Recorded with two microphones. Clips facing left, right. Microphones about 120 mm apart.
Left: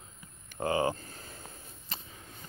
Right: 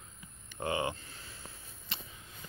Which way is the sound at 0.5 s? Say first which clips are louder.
Left 5 dB; 35° left (ahead or behind).